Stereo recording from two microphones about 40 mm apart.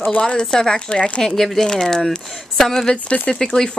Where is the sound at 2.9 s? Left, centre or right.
Left.